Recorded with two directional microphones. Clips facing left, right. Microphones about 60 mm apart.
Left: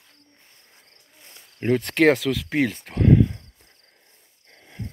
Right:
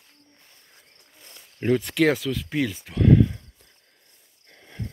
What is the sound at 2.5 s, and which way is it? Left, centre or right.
Speech, left.